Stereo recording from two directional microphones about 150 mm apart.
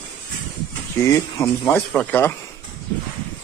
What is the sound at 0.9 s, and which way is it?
A man's voice, 20° left (ahead or behind).